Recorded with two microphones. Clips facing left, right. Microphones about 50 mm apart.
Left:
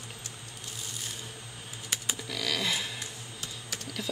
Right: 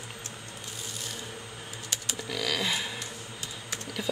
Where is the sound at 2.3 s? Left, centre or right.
Centre.